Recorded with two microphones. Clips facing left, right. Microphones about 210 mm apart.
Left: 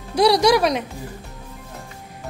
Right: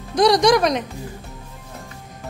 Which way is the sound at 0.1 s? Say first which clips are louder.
Right 1 dB; 10° left (ahead or behind).